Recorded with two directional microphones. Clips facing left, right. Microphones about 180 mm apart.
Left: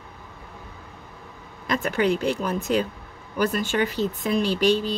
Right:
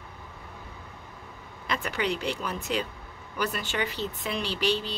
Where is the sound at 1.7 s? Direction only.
45° left (ahead or behind).